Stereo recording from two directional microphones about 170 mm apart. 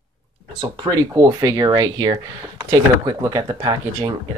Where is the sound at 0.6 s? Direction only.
25° right (ahead or behind).